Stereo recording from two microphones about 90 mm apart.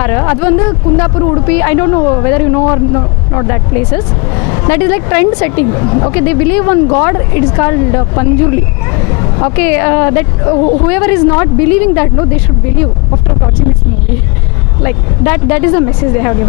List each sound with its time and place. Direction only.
0.0 s speech: 25° left (ahead or behind)
14.8 s speech: 25° left (ahead or behind)